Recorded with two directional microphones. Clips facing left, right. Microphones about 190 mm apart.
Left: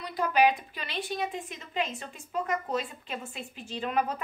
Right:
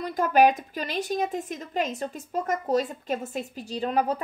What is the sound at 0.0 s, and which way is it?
A woman's voice, 45° right (ahead or behind).